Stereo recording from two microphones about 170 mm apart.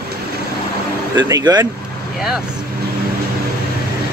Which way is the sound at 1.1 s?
25° right (ahead or behind).